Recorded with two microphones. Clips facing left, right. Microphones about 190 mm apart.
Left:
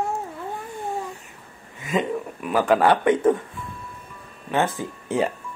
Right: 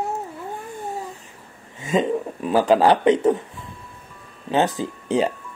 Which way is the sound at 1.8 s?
25° right (ahead or behind).